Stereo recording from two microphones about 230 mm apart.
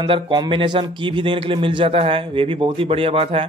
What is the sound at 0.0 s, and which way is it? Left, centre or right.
Speech, centre.